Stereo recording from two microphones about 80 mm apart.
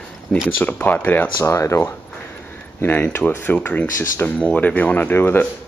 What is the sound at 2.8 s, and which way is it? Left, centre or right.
Speech, left.